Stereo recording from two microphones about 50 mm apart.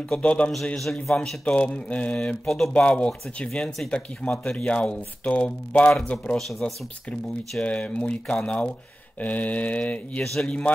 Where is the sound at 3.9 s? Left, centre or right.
Left.